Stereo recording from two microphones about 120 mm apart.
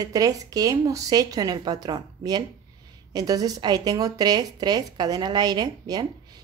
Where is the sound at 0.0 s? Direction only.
30° right (ahead or behind).